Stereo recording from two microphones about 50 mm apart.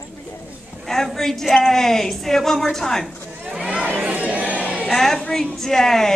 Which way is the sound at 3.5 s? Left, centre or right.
Centre.